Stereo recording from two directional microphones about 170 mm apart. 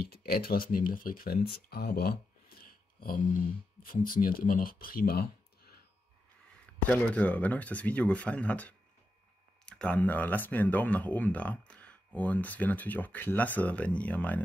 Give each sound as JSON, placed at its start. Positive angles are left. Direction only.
{"t": 0.0, "sound": "speech", "side_deg": 65}
{"t": 6.6, "sound": "speech", "side_deg": 10}